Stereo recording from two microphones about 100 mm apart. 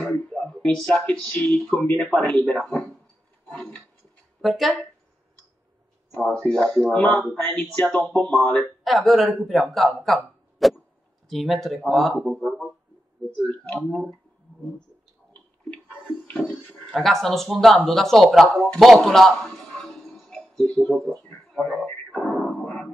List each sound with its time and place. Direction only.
0.1 s a sound: 15° left (ahead or behind)
0.8 s speech: 15° left (ahead or behind)
3.4 s a sound: 5° left (ahead or behind)
4.4 s speech: centre (ahead or behind)
6.1 s speech: 5° left (ahead or behind)
13.4 s speech: 15° left (ahead or behind)
13.7 s speech: centre (ahead or behind)
15.7 s a sound: 15° left (ahead or behind)
16.9 s speech: centre (ahead or behind)
19.5 s music: 15° left (ahead or behind)
19.8 s music: 5° left (ahead or behind)
20.9 s speech: 5° left (ahead or behind)
21.2 s radio: 10° left (ahead or behind)